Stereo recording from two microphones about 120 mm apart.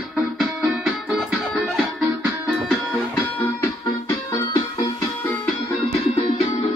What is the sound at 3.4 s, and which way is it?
Music, 25° left (ahead or behind).